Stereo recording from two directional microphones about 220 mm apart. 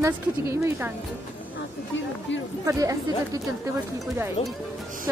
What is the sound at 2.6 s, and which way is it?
Speech, 15° right (ahead or behind).